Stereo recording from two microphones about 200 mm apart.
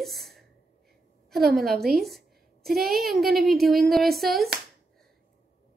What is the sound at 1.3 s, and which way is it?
A woman's voice, centre (ahead or behind).